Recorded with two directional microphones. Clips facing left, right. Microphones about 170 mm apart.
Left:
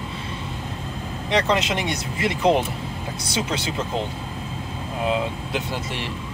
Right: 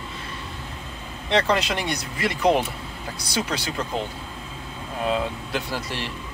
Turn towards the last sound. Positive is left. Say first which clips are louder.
# left 1 dB
turn(degrees=20)  # may be behind; listen again after turning